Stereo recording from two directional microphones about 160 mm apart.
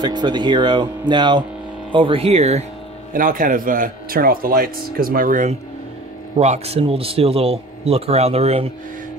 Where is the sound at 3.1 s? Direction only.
60° right (ahead or behind).